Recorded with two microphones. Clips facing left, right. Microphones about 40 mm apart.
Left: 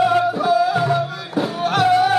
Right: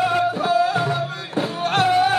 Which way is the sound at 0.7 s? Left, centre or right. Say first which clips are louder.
Left 3 dB; left.